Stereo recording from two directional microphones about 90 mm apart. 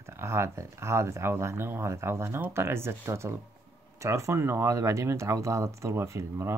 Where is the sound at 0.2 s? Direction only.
30° right (ahead or behind).